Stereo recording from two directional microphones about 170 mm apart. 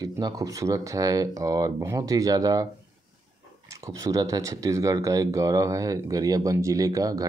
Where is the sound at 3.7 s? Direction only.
20° right (ahead or behind).